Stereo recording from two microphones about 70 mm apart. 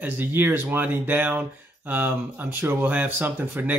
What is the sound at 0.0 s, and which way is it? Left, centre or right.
Speech, right.